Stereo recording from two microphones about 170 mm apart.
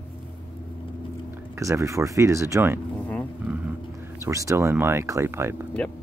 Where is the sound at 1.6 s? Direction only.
20° right (ahead or behind).